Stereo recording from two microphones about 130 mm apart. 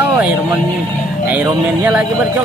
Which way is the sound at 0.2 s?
10° right (ahead or behind).